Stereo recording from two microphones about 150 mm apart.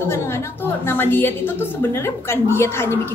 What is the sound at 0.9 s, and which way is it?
A woman's voice, 15° left (ahead or behind).